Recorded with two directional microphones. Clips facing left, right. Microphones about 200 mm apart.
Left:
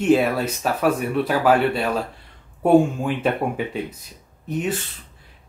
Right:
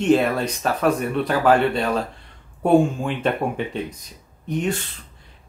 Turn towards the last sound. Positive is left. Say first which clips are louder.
# right 1 dB
turn(degrees=5)  # may be behind; listen again after turning